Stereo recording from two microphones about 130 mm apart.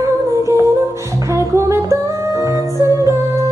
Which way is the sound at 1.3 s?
25° right (ahead or behind).